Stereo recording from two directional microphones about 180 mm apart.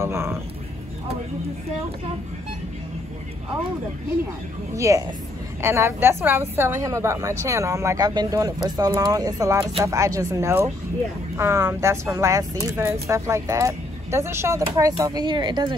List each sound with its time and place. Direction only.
0.0 s speech: 15° right (ahead or behind)
4.7 s speech: 15° right (ahead or behind)